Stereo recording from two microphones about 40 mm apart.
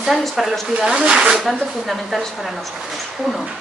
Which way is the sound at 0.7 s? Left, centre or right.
Right.